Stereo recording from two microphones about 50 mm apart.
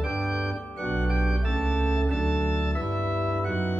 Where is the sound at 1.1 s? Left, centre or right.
Centre.